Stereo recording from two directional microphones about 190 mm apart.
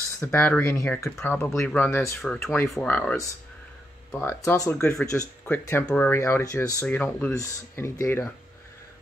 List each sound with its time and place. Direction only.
0.2 s speech: 10° left (ahead or behind)